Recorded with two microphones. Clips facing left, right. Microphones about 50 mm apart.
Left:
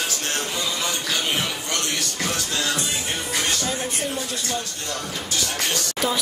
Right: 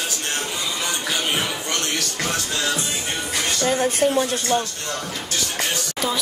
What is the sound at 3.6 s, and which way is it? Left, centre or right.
Speech, right.